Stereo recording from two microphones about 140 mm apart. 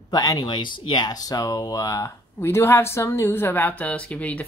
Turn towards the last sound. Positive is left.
turn(degrees=10)  # may be behind; listen again after turning